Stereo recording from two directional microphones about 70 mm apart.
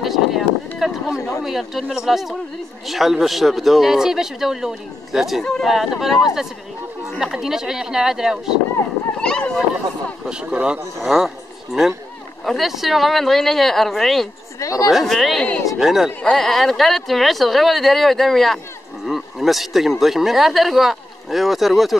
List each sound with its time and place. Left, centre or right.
0.0 s a sound: centre
1.4 s speech: centre
5.4 s speech: centre
5.7 s speech: centre
9.2 s speech: centre
10.2 s speech: centre
14.6 s speech: left
14.9 s speech: centre
16.2 s speech: centre